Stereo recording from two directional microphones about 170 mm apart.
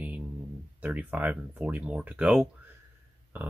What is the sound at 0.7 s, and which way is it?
Speech, 10° right (ahead or behind).